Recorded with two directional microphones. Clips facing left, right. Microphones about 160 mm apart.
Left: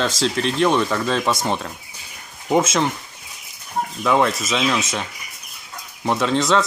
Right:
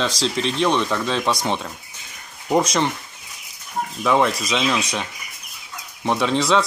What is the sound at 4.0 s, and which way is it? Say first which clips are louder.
Speech: even; centre (ahead or behind).